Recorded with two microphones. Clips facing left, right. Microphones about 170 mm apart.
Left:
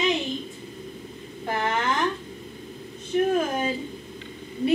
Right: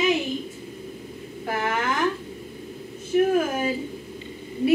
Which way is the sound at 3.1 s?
10° right (ahead or behind).